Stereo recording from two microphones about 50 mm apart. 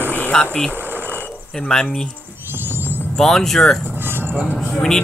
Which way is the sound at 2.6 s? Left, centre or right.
Right.